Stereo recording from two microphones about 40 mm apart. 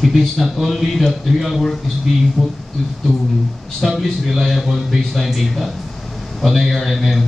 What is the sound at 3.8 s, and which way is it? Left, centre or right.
A man's voice, centre.